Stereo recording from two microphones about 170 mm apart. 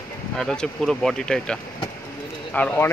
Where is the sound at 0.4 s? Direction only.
5° left (ahead or behind).